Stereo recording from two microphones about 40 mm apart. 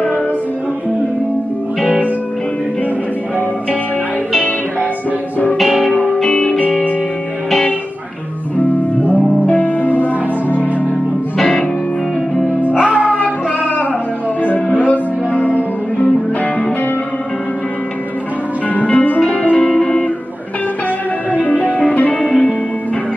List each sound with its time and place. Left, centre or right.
5.9 s music: left
6.1 s music: centre
6.6 s music: left
8.5 s music: left
11.3 s music: centre
13.2 s music: left
18.7 s music: left
19.4 s music: left
21.3 s music: left